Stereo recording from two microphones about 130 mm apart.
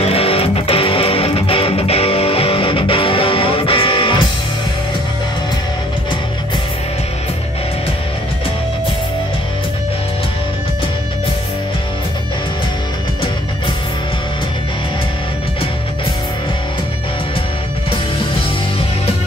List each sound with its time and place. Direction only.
0.0 s music: 50° left (ahead or behind)